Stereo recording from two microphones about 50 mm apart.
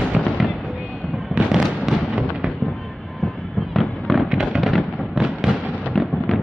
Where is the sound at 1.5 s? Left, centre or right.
Centre.